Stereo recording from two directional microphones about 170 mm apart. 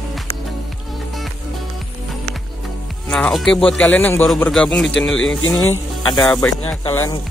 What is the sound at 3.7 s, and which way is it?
A man's voice, 5° left (ahead or behind).